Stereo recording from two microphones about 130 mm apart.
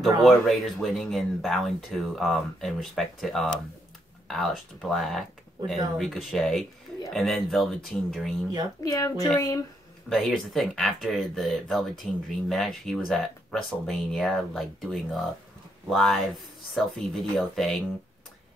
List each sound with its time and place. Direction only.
0.0 s speech: centre (ahead or behind)
8.8 s a woman's voice: 25° left (ahead or behind)
10.0 s speech: 5° left (ahead or behind)